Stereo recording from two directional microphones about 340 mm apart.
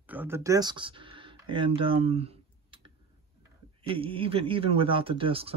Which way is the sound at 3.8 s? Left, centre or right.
Centre.